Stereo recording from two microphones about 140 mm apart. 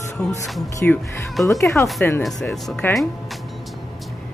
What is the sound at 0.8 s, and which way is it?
Speech, 10° left (ahead or behind).